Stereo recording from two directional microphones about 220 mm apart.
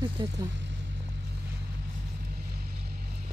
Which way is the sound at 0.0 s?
25° right (ahead or behind).